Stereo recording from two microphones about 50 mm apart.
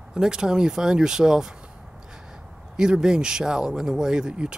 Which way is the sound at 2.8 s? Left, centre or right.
Centre.